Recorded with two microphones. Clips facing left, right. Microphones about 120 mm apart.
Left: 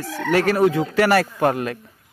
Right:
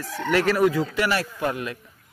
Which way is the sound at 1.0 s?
55° left (ahead or behind).